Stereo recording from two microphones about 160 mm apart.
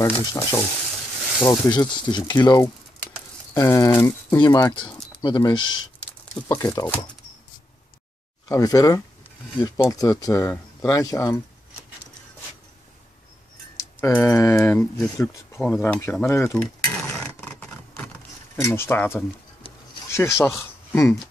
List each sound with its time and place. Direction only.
0.0 s speech: 25° left (ahead or behind)
8.5 s speech: 20° left (ahead or behind)
13.7 s speech: 15° left (ahead or behind)
17.2 s a sound: 10° left (ahead or behind)
18.6 s speech: 15° left (ahead or behind)
20.1 s rub: 15° left (ahead or behind)
20.4 s speech: 15° left (ahead or behind)